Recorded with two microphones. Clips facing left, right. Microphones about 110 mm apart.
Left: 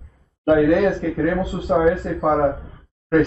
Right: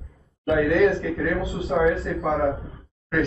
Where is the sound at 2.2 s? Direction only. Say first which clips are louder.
Left 5 dB; 30° left (ahead or behind).